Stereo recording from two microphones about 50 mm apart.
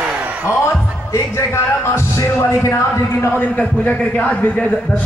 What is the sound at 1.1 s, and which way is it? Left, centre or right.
Music, left.